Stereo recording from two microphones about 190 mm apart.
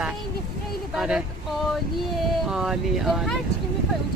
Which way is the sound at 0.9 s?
5° right (ahead or behind).